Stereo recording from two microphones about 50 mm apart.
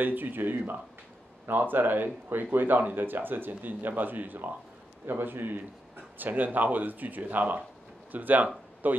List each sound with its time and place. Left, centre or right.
0.0 s a man's voice: right